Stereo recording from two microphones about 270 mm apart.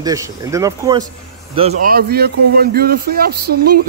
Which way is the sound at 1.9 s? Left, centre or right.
Right.